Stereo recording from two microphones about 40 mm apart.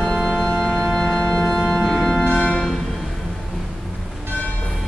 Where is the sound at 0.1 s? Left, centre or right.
Centre.